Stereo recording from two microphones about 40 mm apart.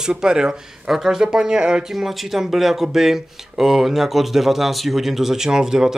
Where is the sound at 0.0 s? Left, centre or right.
Centre.